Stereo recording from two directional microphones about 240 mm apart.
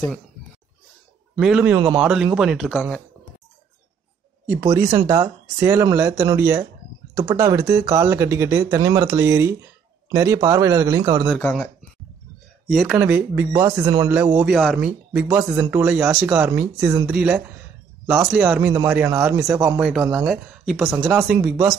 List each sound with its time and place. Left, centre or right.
1.4 s speech: centre
4.5 s speech: centre
11.2 s speech: centre
12.7 s speech: centre